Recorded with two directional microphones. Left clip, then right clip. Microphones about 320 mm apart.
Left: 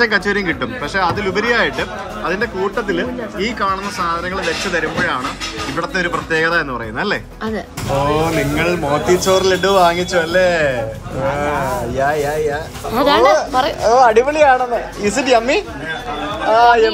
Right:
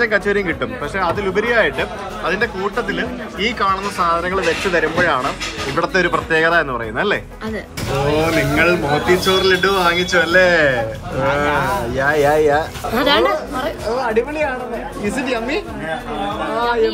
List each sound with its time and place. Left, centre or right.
0.0 s speech: centre
12.9 s speech: left